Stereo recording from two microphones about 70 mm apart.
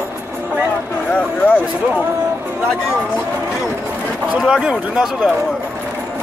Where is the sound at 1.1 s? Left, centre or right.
Left.